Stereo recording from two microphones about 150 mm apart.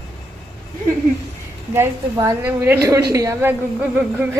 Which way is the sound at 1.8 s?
20° right (ahead or behind).